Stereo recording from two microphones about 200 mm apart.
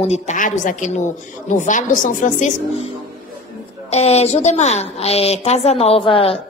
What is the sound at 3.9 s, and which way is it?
A woman's voice, 30° left (ahead or behind).